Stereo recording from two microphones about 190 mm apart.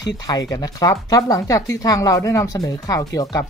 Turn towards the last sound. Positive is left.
turn(degrees=20)  # may be behind; listen again after turning